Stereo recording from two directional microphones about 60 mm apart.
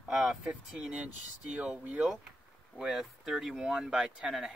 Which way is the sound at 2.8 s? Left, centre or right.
Centre.